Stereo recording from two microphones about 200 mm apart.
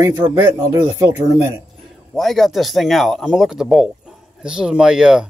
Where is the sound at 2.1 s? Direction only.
Centre (ahead or behind).